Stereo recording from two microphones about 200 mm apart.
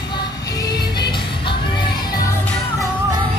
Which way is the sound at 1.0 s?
25° left (ahead or behind).